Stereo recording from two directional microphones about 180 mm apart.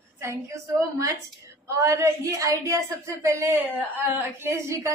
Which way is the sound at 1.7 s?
15° right (ahead or behind).